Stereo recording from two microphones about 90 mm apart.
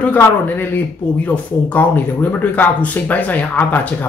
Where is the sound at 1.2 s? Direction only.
20° left (ahead or behind).